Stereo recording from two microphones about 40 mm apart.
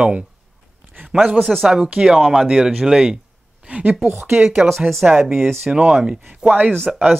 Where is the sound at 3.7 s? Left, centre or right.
Right.